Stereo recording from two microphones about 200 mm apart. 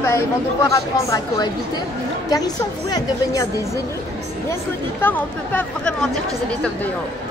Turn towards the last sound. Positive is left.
turn(degrees=5)  # may be behind; listen again after turning